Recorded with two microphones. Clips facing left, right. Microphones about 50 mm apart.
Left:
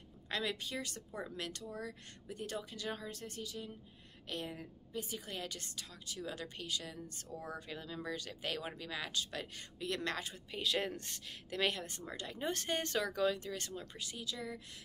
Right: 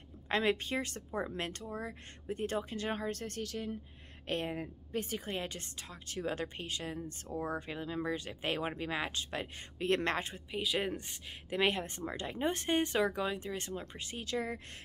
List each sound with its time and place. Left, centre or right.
0.3 s speech: right
4.3 s a woman's voice: right
5.2 s speech: right
10.5 s speech: centre
10.9 s speech: right
14.2 s a woman's voice: right